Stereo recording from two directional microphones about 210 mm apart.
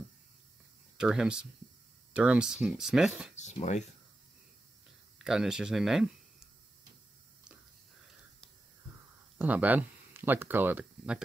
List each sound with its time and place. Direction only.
0.9 s speech: 5° right (ahead or behind)
3.3 s speech: 35° left (ahead or behind)
5.2 s speech: 5° right (ahead or behind)
9.4 s speech: 10° right (ahead or behind)